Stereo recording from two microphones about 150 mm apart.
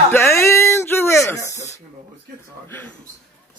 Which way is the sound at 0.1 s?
15° left (ahead or behind).